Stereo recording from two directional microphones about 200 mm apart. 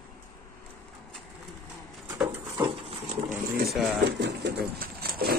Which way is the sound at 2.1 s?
5° right (ahead or behind).